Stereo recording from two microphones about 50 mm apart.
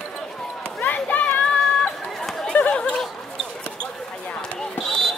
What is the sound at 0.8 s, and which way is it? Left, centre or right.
Run, left.